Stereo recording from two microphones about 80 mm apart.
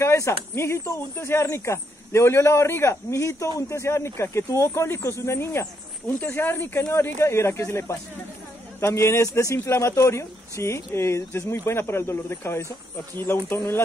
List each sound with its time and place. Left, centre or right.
0.0 s speech: left